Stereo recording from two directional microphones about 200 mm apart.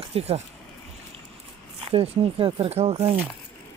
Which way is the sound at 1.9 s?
30° right (ahead or behind).